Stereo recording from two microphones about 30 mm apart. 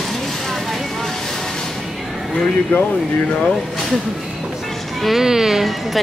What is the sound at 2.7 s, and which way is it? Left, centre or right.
Speech, left.